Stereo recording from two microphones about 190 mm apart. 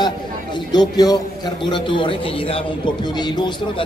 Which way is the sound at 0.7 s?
20° left (ahead or behind).